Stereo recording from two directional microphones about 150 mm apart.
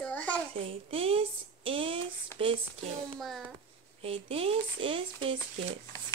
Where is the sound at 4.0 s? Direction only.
40° right (ahead or behind).